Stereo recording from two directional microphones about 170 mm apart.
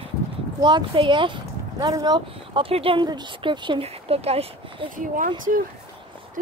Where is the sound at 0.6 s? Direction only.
25° right (ahead or behind).